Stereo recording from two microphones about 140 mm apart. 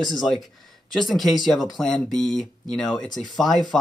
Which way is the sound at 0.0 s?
Centre (ahead or behind).